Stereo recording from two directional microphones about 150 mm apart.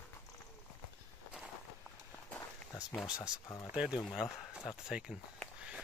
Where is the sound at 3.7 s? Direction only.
5° right (ahead or behind).